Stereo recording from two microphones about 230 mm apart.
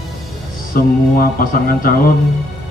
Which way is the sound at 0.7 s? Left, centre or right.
Left.